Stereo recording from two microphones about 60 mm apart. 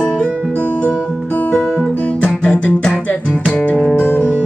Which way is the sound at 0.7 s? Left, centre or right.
Left.